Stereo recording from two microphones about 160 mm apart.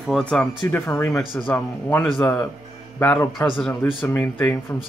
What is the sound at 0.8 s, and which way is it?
Speech, 20° left (ahead or behind).